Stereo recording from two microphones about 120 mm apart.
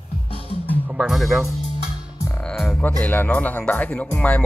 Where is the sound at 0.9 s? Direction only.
5° right (ahead or behind).